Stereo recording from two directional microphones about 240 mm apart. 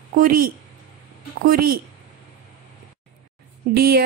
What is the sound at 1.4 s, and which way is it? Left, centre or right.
Speech, right.